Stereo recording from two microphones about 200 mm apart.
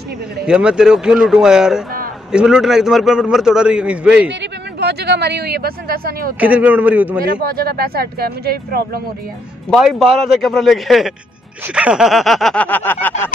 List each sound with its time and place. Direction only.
0.5 s a man's voice: 5° right (ahead or behind)
4.3 s speech: 60° right (ahead or behind)
6.4 s a man's voice: 10° right (ahead or behind)
7.2 s speech: 45° right (ahead or behind)
9.7 s a man's voice: centre (ahead or behind)